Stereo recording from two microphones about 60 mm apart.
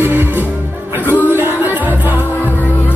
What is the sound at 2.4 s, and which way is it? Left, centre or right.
Music, left.